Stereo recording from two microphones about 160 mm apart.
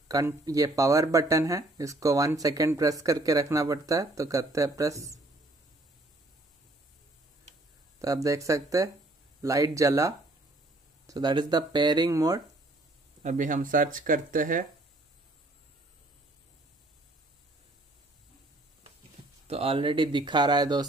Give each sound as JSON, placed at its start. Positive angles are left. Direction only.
{"t": 0.1, "sound": "speech", "side_deg": -20}
{"t": 8.0, "sound": "speech", "side_deg": -20}
{"t": 13.2, "sound": "speech", "side_deg": -50}
{"t": 19.4, "sound": "speech", "side_deg": -35}